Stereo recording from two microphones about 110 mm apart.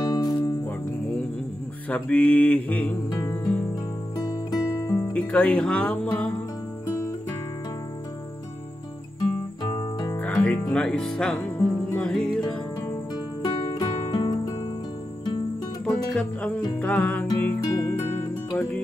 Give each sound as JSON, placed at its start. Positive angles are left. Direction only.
{"t": 0.0, "sound": "music", "side_deg": 40}
{"t": 1.9, "sound": "music", "side_deg": 10}
{"t": 4.2, "sound": "music", "side_deg": 30}
{"t": 5.1, "sound": "music", "side_deg": 10}
{"t": 9.6, "sound": "music", "side_deg": 40}
{"t": 10.1, "sound": "music", "side_deg": 15}
{"t": 12.4, "sound": "music", "side_deg": 40}
{"t": 15.8, "sound": "music", "side_deg": 10}